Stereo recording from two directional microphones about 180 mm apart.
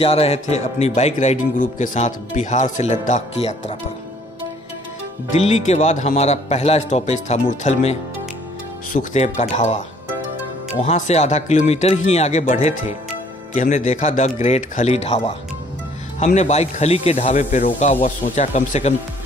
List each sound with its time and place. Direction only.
0.0 s speech: 35° left (ahead or behind)
5.3 s speech: 40° left (ahead or behind)
10.8 s speech: 35° left (ahead or behind)
16.3 s speech: 40° left (ahead or behind)